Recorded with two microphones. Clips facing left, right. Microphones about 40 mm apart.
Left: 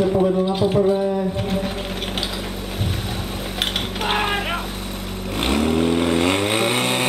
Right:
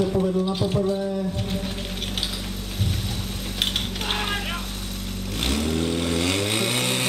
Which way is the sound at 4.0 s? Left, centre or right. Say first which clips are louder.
Left 9 dB; centre.